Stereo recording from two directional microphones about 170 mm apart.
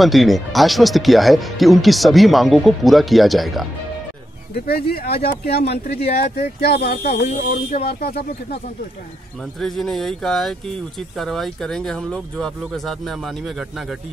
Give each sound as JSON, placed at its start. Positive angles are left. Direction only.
{"t": 0.0, "sound": "speech", "side_deg": 0}
{"t": 4.6, "sound": "speech", "side_deg": 65}
{"t": 7.1, "sound": "speech", "side_deg": 40}
{"t": 7.9, "sound": "speech", "side_deg": 65}
{"t": 9.6, "sound": "speech", "side_deg": 0}